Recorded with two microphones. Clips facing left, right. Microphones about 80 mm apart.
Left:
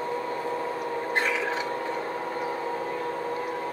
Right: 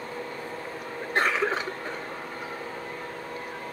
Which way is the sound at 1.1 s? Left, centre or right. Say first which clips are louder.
Right 4 dB; right.